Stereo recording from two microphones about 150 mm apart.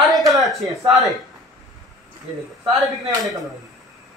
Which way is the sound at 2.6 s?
25° right (ahead or behind).